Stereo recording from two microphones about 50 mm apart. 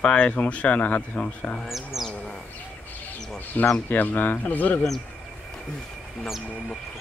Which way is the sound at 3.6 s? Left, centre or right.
Left.